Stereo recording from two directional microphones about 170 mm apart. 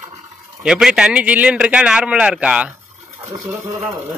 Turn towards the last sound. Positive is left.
turn(degrees=-15)  # may be behind; listen again after turning